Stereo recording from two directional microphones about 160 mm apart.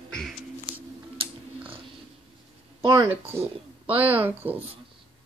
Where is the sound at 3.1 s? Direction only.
15° right (ahead or behind).